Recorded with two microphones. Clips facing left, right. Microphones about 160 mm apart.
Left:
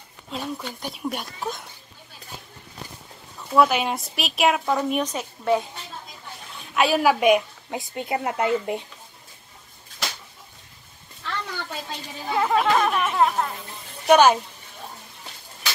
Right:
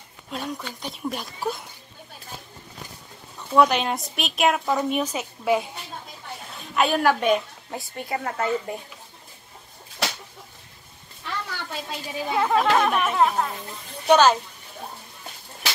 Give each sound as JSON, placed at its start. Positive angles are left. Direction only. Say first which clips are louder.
{"t": 0.3, "sound": "speech", "louder": "left 1 dB", "side_deg": 5}
{"t": 3.3, "sound": "a woman's voice", "louder": "even", "side_deg": 5}
{"t": 6.7, "sound": "a woman's voice", "louder": "left 1 dB", "side_deg": 5}
{"t": 11.2, "sound": "a woman's voice", "louder": "left 1 dB", "side_deg": -5}
{"t": 14.0, "sound": "a woman's voice", "louder": "left 1 dB", "side_deg": 10}